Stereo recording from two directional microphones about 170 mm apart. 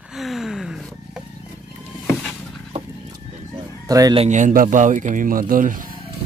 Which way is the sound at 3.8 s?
20° right (ahead or behind).